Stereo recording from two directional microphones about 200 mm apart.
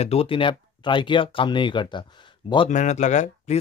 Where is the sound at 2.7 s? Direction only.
35° left (ahead or behind).